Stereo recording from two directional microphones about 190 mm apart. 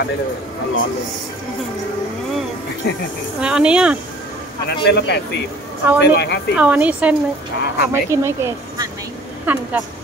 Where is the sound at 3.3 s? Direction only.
5° right (ahead or behind).